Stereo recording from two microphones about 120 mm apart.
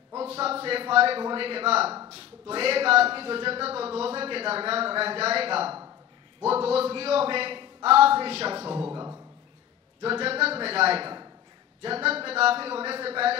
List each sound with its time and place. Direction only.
0.2 s a man's voice: 55° right (ahead or behind)
8.9 s a sound: 30° right (ahead or behind)
10.0 s a man's voice: 55° right (ahead or behind)